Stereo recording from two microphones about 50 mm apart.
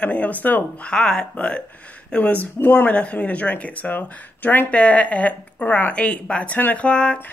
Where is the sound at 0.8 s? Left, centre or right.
Centre.